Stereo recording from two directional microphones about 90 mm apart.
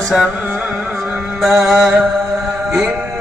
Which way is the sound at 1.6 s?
15° right (ahead or behind).